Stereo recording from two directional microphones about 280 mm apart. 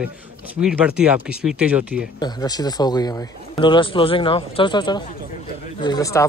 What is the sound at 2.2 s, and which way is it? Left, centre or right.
A man's voice, centre.